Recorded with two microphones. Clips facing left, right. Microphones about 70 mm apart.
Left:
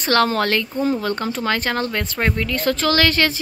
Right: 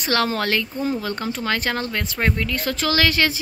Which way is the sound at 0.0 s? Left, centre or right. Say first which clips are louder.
Left 4 dB; centre.